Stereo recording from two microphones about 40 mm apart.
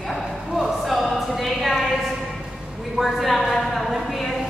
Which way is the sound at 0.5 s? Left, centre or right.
Centre.